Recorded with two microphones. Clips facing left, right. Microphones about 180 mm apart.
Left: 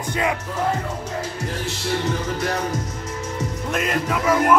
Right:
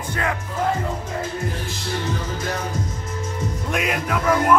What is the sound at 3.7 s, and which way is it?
Speech, 5° right (ahead or behind).